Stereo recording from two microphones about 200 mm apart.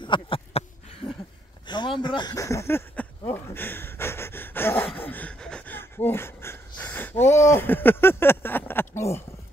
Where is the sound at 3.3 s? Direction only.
10° left (ahead or behind).